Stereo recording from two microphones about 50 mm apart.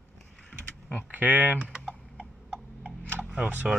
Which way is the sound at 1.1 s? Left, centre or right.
Right.